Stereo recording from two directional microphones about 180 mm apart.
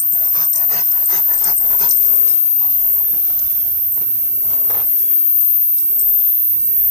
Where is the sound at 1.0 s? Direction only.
Centre (ahead or behind).